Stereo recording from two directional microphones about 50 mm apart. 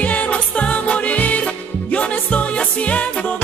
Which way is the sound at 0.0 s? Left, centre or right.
Left.